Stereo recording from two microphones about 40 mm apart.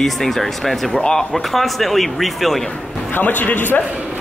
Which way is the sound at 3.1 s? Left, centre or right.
Left.